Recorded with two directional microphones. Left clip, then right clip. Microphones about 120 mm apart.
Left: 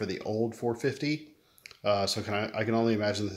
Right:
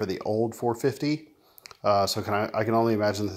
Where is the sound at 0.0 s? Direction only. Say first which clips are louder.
Right 4 dB; 35° right (ahead or behind).